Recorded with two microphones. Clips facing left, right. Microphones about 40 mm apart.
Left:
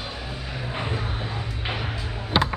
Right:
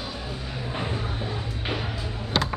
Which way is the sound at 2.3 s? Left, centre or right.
Centre.